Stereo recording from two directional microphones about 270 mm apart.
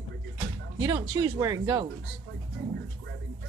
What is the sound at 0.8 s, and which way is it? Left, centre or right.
Speech, centre.